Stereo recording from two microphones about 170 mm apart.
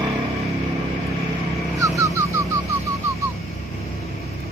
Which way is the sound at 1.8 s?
20° right (ahead or behind).